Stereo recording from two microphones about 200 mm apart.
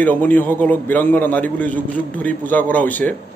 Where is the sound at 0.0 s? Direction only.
10° left (ahead or behind).